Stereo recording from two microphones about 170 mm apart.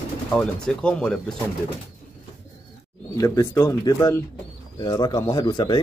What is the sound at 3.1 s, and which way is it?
Speech, 20° left (ahead or behind).